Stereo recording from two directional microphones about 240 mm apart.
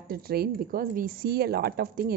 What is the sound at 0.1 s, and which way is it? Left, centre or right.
Speech, right.